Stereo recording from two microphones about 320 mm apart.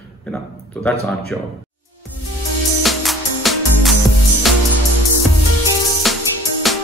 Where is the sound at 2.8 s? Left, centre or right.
Centre.